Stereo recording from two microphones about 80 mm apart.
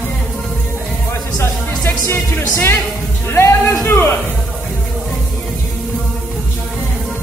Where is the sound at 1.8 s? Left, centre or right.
Left.